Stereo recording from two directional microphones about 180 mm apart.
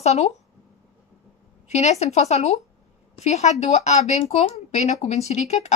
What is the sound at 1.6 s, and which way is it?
A woman's voice, 40° left (ahead or behind).